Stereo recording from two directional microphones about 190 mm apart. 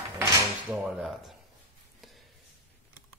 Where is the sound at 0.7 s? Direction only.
5° right (ahead or behind).